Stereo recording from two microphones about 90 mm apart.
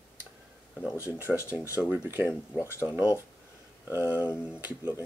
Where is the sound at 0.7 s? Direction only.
20° left (ahead or behind).